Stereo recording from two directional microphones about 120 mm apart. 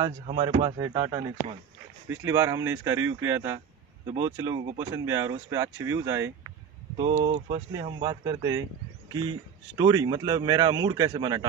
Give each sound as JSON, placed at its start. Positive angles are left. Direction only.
{"t": 0.0, "sound": "speech", "side_deg": -50}
{"t": 0.7, "sound": "a man's voice", "side_deg": -30}
{"t": 7.3, "sound": "a man's voice", "side_deg": -45}
{"t": 9.8, "sound": "a man's voice", "side_deg": -35}